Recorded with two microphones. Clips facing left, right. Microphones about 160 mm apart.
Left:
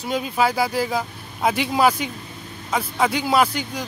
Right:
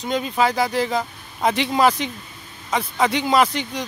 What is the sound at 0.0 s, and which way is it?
Speech, 5° left (ahead or behind).